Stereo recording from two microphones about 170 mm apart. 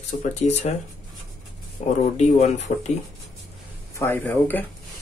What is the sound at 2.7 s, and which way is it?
Speech, 45° left (ahead or behind).